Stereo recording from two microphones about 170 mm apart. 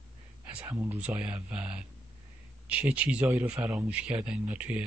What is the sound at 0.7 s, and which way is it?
Speech, 10° right (ahead or behind).